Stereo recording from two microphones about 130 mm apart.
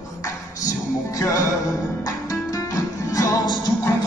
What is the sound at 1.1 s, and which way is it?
Music, 25° left (ahead or behind).